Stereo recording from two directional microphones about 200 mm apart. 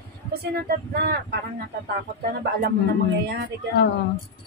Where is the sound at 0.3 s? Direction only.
50° right (ahead or behind).